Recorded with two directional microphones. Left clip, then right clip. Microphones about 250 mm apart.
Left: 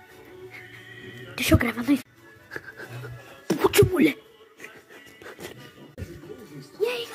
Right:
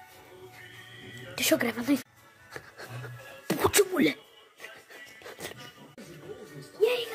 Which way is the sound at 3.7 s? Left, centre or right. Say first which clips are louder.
Left 6 dB; centre.